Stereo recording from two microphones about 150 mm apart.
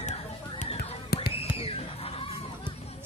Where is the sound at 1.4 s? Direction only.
40° left (ahead or behind).